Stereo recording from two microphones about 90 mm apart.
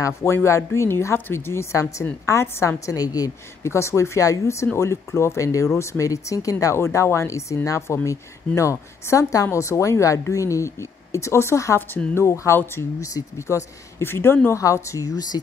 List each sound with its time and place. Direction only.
0.0 s speech: 30° left (ahead or behind)
3.6 s speech: 30° left (ahead or behind)